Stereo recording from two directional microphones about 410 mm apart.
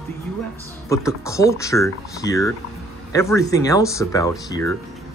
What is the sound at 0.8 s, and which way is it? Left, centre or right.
Speech, centre.